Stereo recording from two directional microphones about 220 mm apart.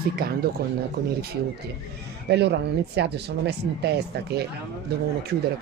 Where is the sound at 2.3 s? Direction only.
50° right (ahead or behind).